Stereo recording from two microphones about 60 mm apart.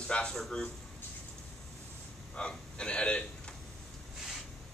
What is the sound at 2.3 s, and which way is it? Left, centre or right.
Speech, centre.